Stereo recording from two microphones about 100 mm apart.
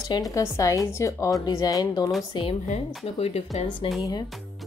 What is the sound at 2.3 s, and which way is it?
Speech, 60° left (ahead or behind).